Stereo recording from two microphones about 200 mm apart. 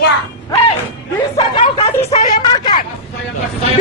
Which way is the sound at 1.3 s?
25° left (ahead or behind).